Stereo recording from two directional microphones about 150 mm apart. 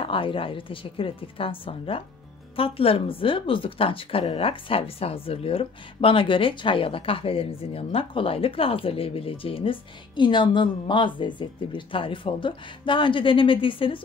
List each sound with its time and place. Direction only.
0.0 s a woman's voice: 35° left (ahead or behind)